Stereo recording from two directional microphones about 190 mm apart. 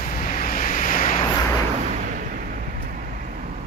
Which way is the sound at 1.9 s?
45° right (ahead or behind).